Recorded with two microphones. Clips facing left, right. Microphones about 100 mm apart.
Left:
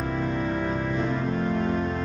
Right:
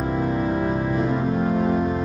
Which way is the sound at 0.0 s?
15° right (ahead or behind).